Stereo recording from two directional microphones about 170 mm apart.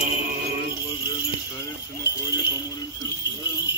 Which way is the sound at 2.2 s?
20° left (ahead or behind).